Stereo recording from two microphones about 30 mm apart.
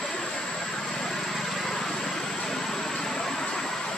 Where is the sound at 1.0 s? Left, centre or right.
Centre.